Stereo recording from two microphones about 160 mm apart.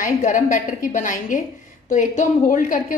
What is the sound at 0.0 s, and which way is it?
A woman's voice, 55° left (ahead or behind).